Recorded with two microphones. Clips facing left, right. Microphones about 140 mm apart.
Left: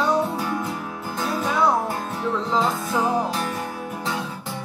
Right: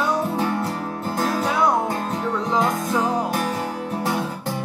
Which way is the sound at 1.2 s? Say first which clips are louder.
Right 3 dB; 40° right (ahead or behind).